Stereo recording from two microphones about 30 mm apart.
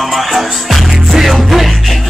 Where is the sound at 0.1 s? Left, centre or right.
Centre.